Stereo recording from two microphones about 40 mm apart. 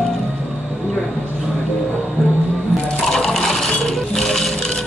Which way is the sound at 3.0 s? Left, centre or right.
Centre.